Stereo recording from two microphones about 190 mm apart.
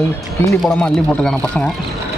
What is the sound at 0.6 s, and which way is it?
A man's voice, 5° left (ahead or behind).